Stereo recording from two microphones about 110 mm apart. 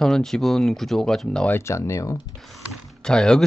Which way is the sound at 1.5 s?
25° left (ahead or behind).